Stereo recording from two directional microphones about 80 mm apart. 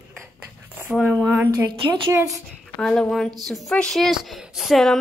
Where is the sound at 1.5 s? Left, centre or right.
Right.